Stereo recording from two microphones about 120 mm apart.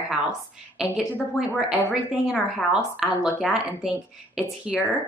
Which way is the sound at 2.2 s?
5° right (ahead or behind).